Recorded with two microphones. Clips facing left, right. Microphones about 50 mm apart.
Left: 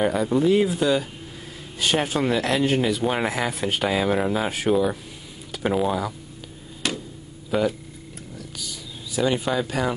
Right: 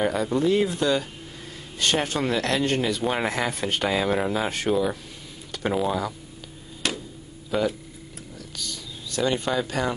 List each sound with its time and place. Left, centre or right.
0.0 s speech: centre
6.8 s a sound: centre
7.5 s speech: centre